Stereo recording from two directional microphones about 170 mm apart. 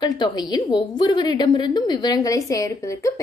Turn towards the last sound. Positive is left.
turn(degrees=20)  # may be behind; listen again after turning